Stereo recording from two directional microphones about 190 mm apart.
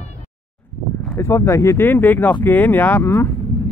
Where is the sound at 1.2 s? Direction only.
15° left (ahead or behind).